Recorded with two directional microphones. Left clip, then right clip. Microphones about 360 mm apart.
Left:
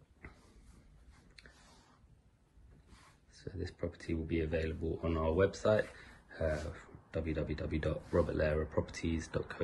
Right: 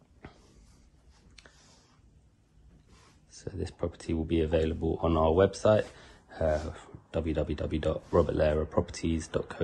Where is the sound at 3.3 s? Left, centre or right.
Centre.